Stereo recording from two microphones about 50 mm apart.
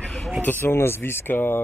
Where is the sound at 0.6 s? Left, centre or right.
Left.